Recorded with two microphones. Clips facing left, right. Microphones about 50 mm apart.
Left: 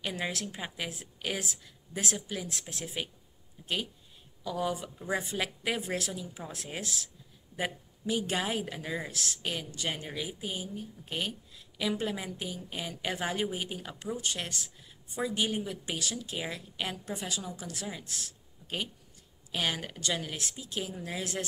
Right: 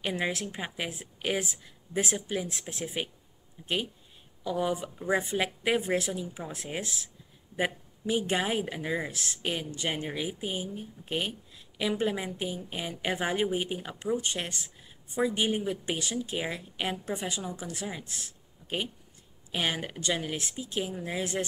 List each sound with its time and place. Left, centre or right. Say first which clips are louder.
0.0 s speech: right 4 dB; centre